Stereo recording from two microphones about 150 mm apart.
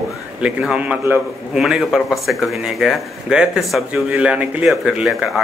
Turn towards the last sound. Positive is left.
turn(degrees=-5)  # may be behind; listen again after turning